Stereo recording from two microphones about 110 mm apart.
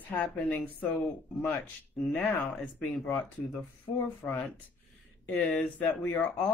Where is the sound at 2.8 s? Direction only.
10° left (ahead or behind).